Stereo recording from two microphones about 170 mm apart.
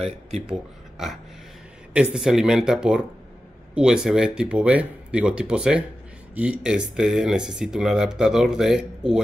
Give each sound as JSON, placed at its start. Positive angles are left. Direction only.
{"t": 0.5, "sound": "speech", "side_deg": -5}